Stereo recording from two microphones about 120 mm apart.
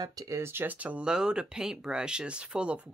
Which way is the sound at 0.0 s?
30° right (ahead or behind).